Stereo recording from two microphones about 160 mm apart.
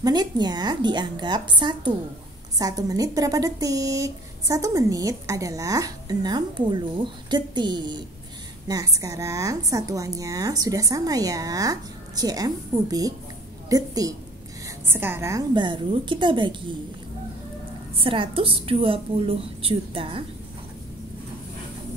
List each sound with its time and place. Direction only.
0.0 s a woman's voice: 25° right (ahead or behind)
15.5 s speech: 30° right (ahead or behind)
17.9 s a woman's voice: 35° right (ahead or behind)